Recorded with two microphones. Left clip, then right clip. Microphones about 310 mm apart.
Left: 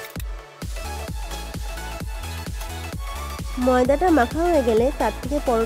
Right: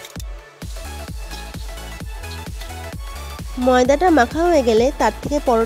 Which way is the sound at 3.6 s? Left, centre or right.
Centre.